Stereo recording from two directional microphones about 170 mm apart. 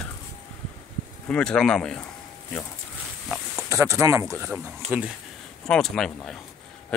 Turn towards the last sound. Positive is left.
turn(degrees=5)  # may be behind; listen again after turning